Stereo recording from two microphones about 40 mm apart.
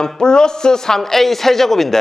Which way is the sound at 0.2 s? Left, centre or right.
Centre.